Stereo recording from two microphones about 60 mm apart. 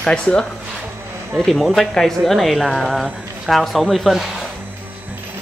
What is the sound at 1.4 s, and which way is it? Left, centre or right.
Speech, centre.